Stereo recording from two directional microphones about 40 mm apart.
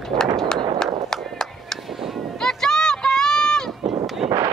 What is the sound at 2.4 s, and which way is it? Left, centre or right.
Run, centre.